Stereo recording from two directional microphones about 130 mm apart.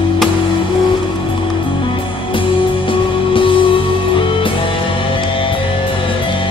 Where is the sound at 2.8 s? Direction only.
40° left (ahead or behind).